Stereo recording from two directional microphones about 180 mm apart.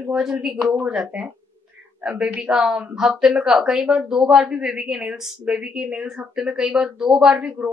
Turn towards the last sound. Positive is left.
turn(degrees=-5)  # may be behind; listen again after turning